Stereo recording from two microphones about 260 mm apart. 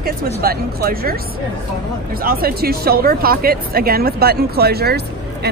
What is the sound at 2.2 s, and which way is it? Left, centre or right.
Speech, right.